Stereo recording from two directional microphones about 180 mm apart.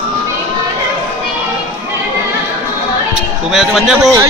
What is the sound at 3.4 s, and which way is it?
Speech, centre (ahead or behind).